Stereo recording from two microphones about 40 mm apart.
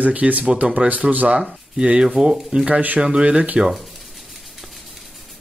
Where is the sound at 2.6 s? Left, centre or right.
Right.